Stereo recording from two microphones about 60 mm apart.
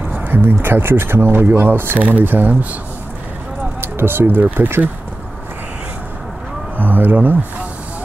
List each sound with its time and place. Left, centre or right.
0.1 s speech: right
2.0 s speech: right
3.8 s speech: right
6.8 s speech: right